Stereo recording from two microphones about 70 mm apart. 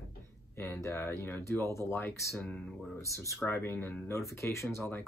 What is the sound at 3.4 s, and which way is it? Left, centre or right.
Speech, left.